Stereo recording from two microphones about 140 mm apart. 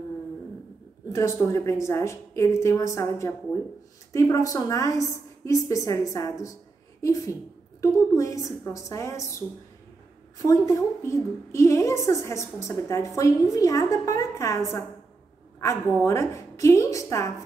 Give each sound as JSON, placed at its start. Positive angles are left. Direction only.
{"t": 1.0, "sound": "a woman's voice", "side_deg": 20}
{"t": 10.4, "sound": "a woman's voice", "side_deg": 25}
{"t": 15.6, "sound": "a woman's voice", "side_deg": 20}